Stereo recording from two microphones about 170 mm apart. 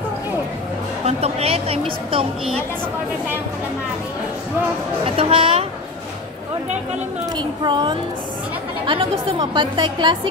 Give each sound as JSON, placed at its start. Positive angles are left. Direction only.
{"t": 1.0, "sound": "speech", "side_deg": -40}
{"t": 5.1, "sound": "speech", "side_deg": -30}
{"t": 7.3, "sound": "a woman's voice", "side_deg": -25}